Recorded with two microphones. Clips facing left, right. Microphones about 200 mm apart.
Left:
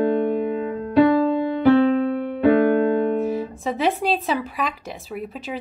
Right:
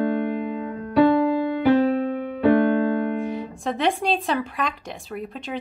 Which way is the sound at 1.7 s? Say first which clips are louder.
Left 3 dB; 60° left (ahead or behind).